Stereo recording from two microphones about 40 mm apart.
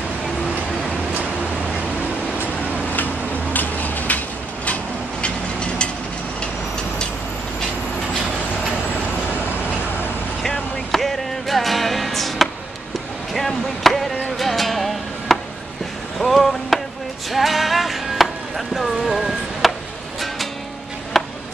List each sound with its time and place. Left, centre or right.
3.5 s a sound: left
5.2 s vehicle: left
10.4 s music: centre
13.3 s chop: centre
14.4 s music: centre
16.2 s a sound: centre
17.3 s music: centre
21.1 s chop: centre